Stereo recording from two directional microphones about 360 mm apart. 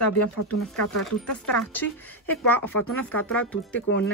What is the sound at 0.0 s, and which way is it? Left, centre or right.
Speech, left.